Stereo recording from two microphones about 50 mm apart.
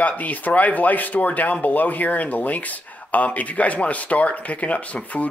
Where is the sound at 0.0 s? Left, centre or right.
Left.